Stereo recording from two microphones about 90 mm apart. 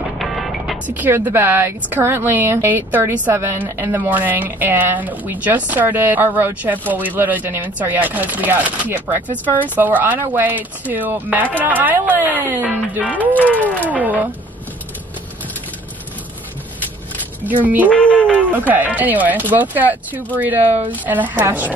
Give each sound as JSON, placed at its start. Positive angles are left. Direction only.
{"t": 0.2, "sound": "music", "side_deg": 0}
{"t": 0.8, "sound": "chopping", "side_deg": -20}
{"t": 13.5, "sound": "speech", "side_deg": 15}
{"t": 13.8, "sound": "speech", "side_deg": -20}
{"t": 17.8, "sound": "speech", "side_deg": 15}
{"t": 18.5, "sound": "chopping", "side_deg": -20}